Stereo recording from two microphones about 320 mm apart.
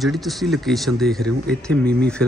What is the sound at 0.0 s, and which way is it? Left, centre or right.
Speech, centre.